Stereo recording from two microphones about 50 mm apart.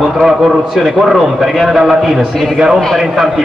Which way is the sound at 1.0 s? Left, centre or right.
Centre.